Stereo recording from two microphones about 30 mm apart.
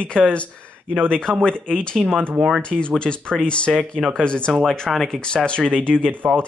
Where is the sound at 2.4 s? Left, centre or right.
Centre.